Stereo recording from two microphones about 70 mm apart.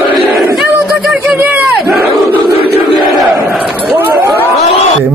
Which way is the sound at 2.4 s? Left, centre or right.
Right.